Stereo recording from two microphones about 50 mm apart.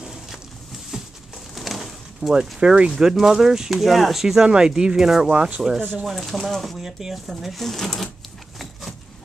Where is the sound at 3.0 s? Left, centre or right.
Centre.